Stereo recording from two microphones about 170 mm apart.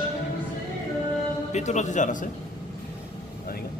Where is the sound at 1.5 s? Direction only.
45° left (ahead or behind).